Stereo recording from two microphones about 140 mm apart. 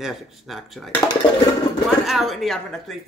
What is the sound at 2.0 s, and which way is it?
Speech, centre (ahead or behind).